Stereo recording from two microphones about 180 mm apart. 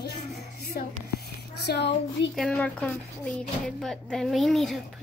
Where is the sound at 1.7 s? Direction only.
60° left (ahead or behind).